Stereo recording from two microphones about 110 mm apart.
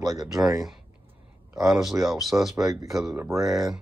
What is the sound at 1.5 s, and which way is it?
A man's voice, 5° right (ahead or behind).